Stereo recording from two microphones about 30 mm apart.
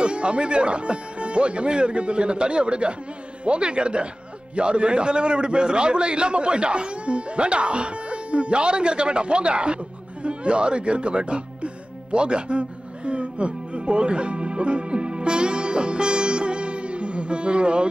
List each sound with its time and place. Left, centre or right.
0.0 s a man's voice: right
10.2 s music: right